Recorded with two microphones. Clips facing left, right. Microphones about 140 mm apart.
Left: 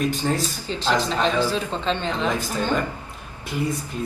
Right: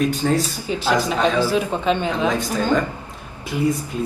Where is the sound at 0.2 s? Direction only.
5° left (ahead or behind).